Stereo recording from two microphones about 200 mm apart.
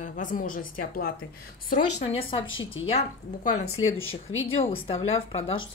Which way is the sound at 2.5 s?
75° left (ahead or behind).